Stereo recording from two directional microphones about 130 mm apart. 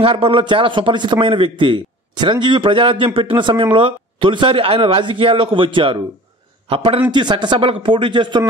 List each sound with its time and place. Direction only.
0.0 s a man's voice: 45° right (ahead or behind)